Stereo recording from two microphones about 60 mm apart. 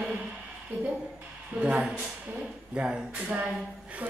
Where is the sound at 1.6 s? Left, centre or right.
Centre.